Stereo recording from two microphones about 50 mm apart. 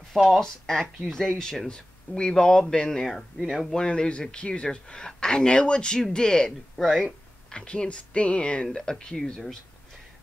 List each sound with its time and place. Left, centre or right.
0.3 s speech: centre
3.1 s speech: centre
3.7 s speech: centre
7.5 s speech: left